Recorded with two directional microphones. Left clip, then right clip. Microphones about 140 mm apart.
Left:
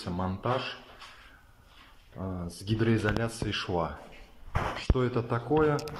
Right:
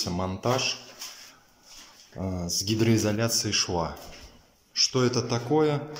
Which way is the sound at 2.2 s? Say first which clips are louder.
Right 9 dB; 10° right (ahead or behind).